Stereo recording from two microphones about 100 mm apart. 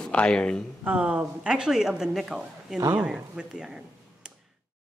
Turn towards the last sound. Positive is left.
turn(degrees=-5)  # may be behind; listen again after turning